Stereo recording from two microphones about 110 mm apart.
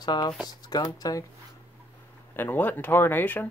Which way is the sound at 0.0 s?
40° left (ahead or behind).